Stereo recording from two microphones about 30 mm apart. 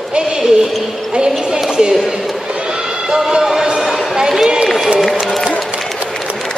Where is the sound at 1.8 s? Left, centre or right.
Right.